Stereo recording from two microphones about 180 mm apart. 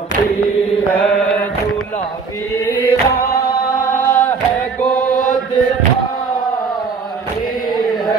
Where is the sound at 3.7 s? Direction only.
45° left (ahead or behind).